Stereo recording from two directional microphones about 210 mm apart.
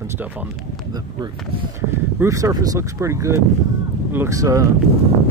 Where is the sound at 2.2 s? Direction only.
15° right (ahead or behind).